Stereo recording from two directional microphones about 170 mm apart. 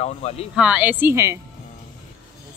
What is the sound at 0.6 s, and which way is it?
Speech, 10° right (ahead or behind).